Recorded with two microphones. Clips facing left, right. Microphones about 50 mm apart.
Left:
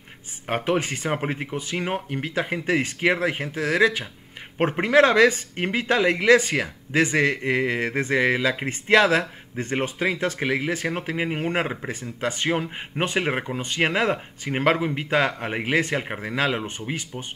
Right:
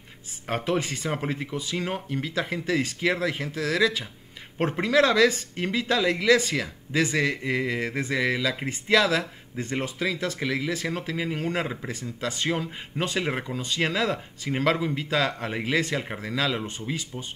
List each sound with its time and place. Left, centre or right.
0.5 s speech: left